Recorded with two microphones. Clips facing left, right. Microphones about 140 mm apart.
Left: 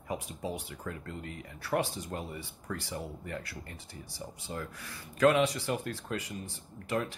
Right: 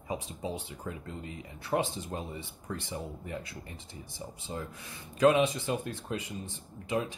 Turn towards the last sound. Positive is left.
turn(degrees=-20)  # may be behind; listen again after turning